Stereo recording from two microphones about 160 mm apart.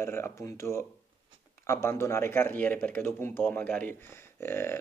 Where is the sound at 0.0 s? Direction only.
15° left (ahead or behind).